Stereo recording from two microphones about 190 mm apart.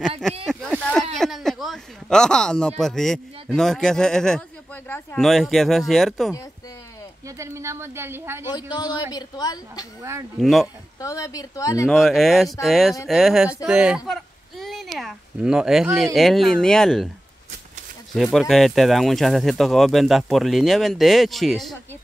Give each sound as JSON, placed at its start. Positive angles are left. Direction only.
{"t": 0.5, "sound": "a sound", "side_deg": 0}
{"t": 2.8, "sound": "speech", "side_deg": 0}
{"t": 7.2, "sound": "a woman's voice", "side_deg": -15}
{"t": 8.5, "sound": "a woman's voice", "side_deg": 20}
{"t": 10.4, "sound": "speech", "side_deg": 0}
{"t": 11.0, "sound": "a woman's voice", "side_deg": 15}
{"t": 11.9, "sound": "speech", "side_deg": 0}
{"t": 18.1, "sound": "speech", "side_deg": 0}